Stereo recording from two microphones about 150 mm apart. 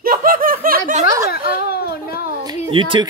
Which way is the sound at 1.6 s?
90° left.